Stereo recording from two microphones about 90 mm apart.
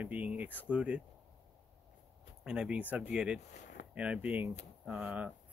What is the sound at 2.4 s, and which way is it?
Speech, 10° right (ahead or behind).